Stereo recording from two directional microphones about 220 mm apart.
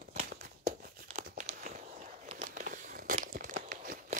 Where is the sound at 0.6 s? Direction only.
40° right (ahead or behind).